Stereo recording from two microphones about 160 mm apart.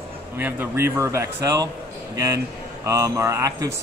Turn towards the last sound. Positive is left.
turn(degrees=-20)  # may be behind; listen again after turning